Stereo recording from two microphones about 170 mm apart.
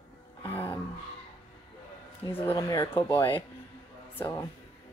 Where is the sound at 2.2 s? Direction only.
15° left (ahead or behind).